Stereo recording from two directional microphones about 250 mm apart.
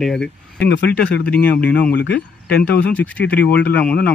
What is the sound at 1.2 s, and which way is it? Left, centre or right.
Speech, centre.